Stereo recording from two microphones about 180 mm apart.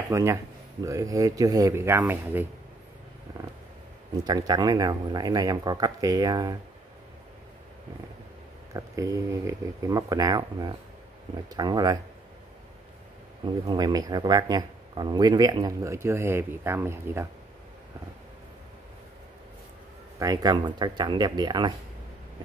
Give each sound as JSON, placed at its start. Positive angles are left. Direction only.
{"t": 0.1, "sound": "speech", "side_deg": -15}
{"t": 4.2, "sound": "speech", "side_deg": -20}
{"t": 8.7, "sound": "speech", "side_deg": -15}
{"t": 13.7, "sound": "speech", "side_deg": -20}
{"t": 20.2, "sound": "speech", "side_deg": -20}